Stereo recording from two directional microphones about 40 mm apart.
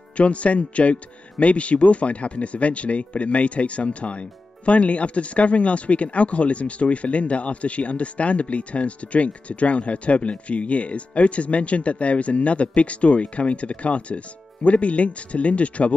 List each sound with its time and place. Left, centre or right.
0.2 s speech: left